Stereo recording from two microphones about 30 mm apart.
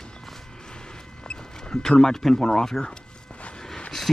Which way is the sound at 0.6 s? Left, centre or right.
Left.